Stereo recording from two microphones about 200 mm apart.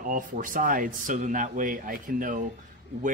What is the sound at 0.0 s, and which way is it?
Speech, 40° right (ahead or behind).